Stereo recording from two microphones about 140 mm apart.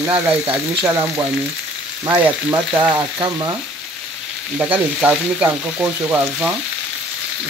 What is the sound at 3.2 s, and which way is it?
Frying, 30° right (ahead or behind).